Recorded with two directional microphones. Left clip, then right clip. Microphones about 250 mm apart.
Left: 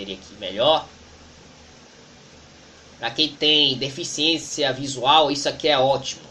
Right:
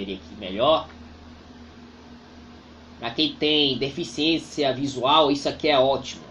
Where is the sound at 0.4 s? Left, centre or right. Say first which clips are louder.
Left 2 dB; centre.